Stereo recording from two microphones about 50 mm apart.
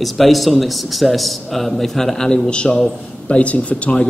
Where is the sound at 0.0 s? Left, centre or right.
Centre.